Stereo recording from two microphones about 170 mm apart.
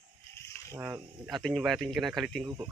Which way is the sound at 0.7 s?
15° right (ahead or behind).